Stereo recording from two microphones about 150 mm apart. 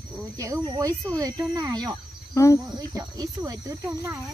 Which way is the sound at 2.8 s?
25° right (ahead or behind).